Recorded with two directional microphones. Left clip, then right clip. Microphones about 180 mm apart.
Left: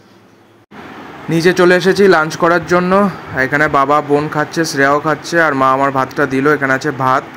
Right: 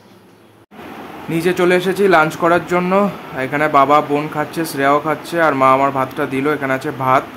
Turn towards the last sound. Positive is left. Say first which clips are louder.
# left 2 dB
turn(degrees=15)  # may be behind; listen again after turning